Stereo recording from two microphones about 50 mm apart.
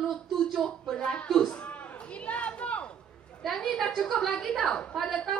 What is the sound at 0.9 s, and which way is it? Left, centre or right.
Speech, centre.